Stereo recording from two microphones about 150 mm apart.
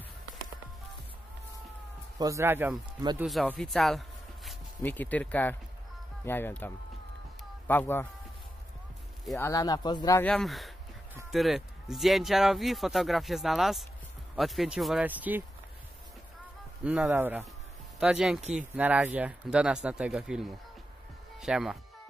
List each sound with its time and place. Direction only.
2.1 s speech: 20° right (ahead or behind)
3.4 s speech: centre (ahead or behind)
9.4 s speech: 25° left (ahead or behind)
10.2 s speech: 5° left (ahead or behind)
16.8 s speech: 5° right (ahead or behind)